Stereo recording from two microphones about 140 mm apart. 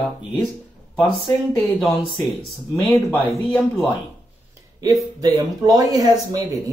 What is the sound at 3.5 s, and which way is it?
Speech, 5° left (ahead or behind).